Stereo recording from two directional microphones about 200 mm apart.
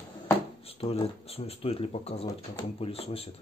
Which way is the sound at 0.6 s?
30° left (ahead or behind).